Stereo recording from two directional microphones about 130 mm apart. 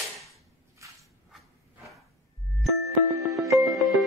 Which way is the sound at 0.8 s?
25° right (ahead or behind).